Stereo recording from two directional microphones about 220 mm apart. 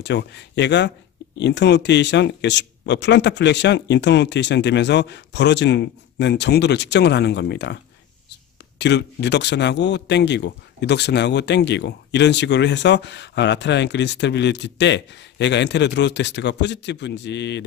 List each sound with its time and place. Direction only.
0.0 s speech: 50° left (ahead or behind)